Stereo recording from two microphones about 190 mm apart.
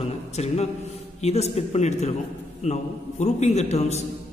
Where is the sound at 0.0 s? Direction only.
35° left (ahead or behind).